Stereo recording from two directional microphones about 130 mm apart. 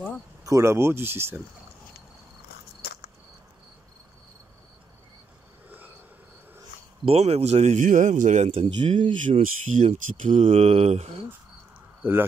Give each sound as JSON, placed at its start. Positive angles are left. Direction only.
{"t": 0.5, "sound": "speech", "side_deg": -20}
{"t": 5.7, "sound": "cricket", "side_deg": -10}
{"t": 7.1, "sound": "speech", "side_deg": -55}
{"t": 8.5, "sound": "speech", "side_deg": -50}
{"t": 9.0, "sound": "speech", "side_deg": -40}
{"t": 9.4, "sound": "speech", "side_deg": -80}
{"t": 10.4, "sound": "speech", "side_deg": -50}
{"t": 12.0, "sound": "speech", "side_deg": -15}